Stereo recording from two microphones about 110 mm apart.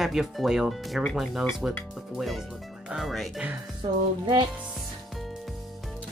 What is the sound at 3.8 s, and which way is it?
Speech, 45° right (ahead or behind).